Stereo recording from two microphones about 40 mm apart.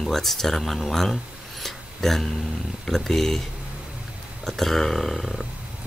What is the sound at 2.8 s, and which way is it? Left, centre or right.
Speech, centre.